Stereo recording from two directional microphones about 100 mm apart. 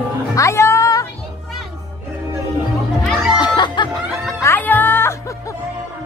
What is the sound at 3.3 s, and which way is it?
Music, 50° left (ahead or behind).